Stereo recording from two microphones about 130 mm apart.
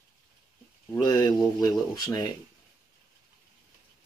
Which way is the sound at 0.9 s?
30° left (ahead or behind).